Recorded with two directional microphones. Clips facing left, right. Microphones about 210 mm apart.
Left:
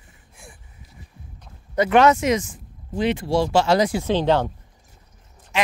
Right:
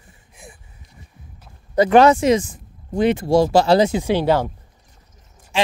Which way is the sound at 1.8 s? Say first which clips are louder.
Right 4 dB; 35° right (ahead or behind).